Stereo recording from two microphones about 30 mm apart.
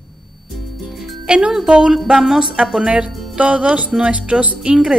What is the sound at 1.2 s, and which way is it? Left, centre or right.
Speech, right.